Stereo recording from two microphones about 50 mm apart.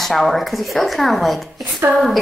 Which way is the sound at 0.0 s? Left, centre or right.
Centre.